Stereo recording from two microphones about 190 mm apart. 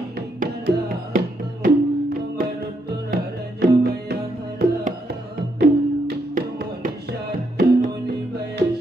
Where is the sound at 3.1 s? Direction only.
55° right (ahead or behind).